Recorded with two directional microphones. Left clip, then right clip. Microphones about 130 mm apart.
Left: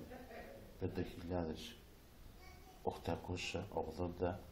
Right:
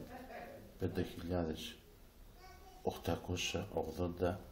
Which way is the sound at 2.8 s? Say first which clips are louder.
Right 3 dB; 15° right (ahead or behind).